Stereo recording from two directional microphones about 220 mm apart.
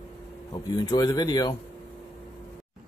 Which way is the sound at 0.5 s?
20° left (ahead or behind).